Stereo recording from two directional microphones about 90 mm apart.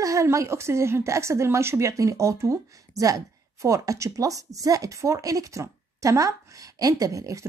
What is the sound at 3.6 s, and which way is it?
Speech, 35° right (ahead or behind).